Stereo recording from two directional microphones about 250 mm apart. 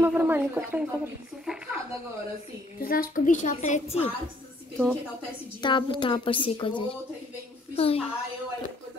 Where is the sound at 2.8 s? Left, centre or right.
Left.